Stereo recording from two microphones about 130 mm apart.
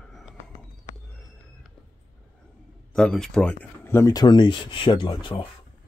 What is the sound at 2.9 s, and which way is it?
Speech, centre (ahead or behind).